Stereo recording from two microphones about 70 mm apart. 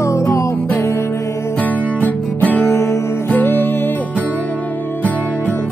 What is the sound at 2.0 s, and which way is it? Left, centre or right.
Music, left.